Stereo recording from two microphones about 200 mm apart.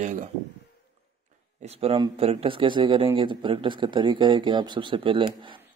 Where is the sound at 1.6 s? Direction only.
30° right (ahead or behind).